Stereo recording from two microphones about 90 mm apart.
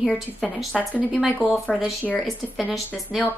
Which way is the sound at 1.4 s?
10° right (ahead or behind).